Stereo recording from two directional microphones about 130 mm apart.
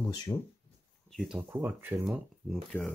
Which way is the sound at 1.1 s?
5° right (ahead or behind).